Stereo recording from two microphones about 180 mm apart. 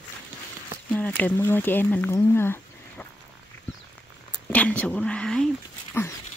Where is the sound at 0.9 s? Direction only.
10° left (ahead or behind).